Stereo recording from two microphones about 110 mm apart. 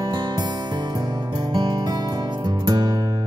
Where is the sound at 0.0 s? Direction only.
40° right (ahead or behind).